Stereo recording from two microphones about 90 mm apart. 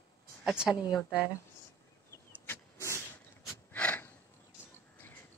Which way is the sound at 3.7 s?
15° left (ahead or behind).